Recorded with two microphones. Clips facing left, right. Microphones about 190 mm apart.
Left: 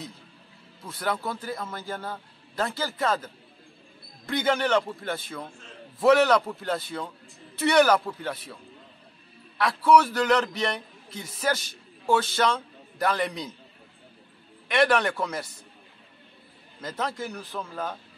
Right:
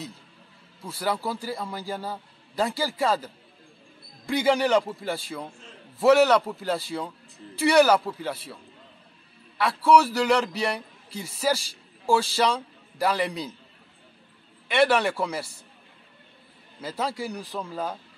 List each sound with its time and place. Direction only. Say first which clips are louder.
0.8 s a man's voice: right 2 dB; 5° right (ahead or behind)
4.3 s a man's voice: right 3 dB; 10° right (ahead or behind)
9.8 s a man's voice: right 1 dB; 5° right (ahead or behind)
14.7 s a man's voice: right 1 dB; 5° right (ahead or behind)
16.8 s a man's voice: right 2 dB; 10° right (ahead or behind)